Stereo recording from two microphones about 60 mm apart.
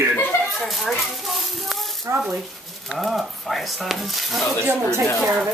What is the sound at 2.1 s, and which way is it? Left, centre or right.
Speech, right.